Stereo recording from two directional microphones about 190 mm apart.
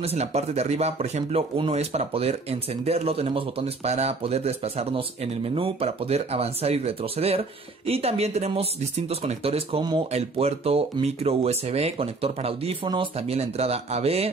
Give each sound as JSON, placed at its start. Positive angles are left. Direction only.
{"t": 0.0, "sound": "speech", "side_deg": -35}